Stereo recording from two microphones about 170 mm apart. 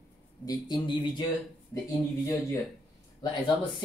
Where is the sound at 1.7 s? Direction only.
15° left (ahead or behind).